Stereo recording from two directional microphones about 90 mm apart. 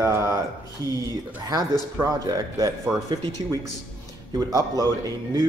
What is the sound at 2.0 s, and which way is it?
Speech, 40° right (ahead or behind).